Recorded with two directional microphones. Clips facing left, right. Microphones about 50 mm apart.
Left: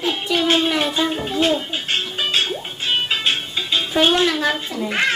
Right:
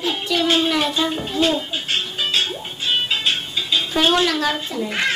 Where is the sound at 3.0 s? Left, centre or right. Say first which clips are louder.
Left 1 dB; left.